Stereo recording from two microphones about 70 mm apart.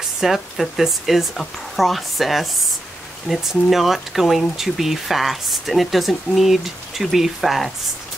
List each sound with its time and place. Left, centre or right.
0.2 s speech: centre